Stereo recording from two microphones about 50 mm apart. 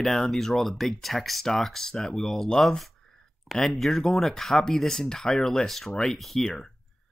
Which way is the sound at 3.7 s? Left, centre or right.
Centre.